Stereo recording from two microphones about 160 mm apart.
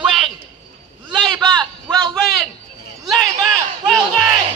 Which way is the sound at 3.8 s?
Centre (ahead or behind).